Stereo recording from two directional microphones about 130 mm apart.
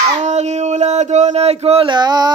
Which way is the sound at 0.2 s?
60° right (ahead or behind).